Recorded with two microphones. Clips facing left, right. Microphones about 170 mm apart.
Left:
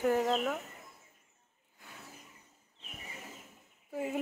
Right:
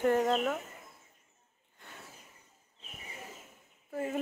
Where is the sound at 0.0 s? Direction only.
5° left (ahead or behind).